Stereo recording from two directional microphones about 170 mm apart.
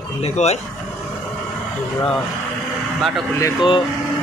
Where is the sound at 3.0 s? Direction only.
Centre (ahead or behind).